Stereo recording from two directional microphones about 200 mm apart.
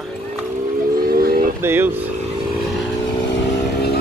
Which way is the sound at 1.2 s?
45° right (ahead or behind).